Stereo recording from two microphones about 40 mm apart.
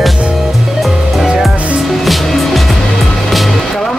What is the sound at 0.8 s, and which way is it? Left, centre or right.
Music, centre.